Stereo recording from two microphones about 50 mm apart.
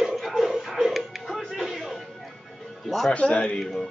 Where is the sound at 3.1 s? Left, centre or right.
Left.